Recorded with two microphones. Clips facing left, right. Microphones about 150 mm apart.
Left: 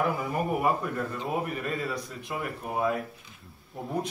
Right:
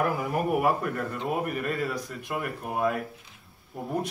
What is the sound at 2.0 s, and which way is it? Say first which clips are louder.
Speech: right 2 dB; centre (ahead or behind).